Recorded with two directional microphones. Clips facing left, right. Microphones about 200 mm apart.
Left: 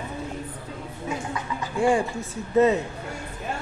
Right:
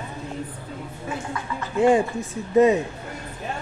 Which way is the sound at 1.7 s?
20° right (ahead or behind).